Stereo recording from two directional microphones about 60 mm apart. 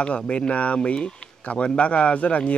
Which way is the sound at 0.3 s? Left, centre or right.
Centre.